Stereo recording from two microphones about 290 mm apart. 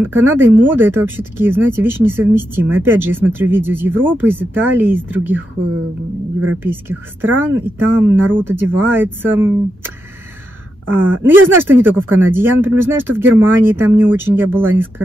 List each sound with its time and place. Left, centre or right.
0.0 s speech: centre
6.6 s speech: centre
10.9 s speech: centre